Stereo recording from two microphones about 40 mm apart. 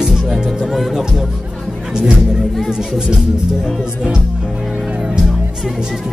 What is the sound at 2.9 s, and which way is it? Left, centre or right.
Speech, centre.